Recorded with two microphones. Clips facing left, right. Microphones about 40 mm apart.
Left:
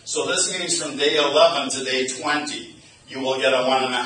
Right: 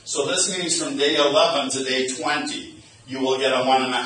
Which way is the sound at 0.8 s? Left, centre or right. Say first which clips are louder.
Even; left.